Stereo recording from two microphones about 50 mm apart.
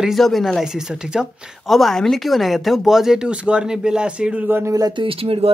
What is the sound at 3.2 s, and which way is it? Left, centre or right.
Speech, right.